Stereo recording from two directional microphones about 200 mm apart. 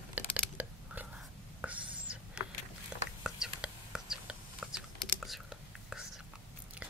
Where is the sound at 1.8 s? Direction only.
25° right (ahead or behind).